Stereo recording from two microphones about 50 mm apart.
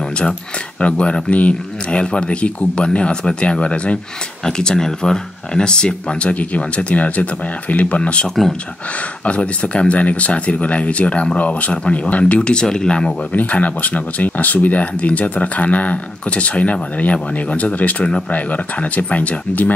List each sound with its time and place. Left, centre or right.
0.3 s speech: left
12.4 s speech: centre
13.3 s speech: left